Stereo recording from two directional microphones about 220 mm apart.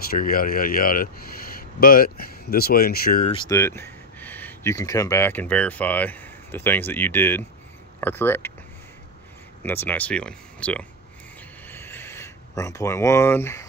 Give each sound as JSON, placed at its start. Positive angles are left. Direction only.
{"t": 0.0, "sound": "speech", "side_deg": 40}
{"t": 3.3, "sound": "speech", "side_deg": 20}
{"t": 9.6, "sound": "speech", "side_deg": 10}
{"t": 11.7, "sound": "a sound", "side_deg": 10}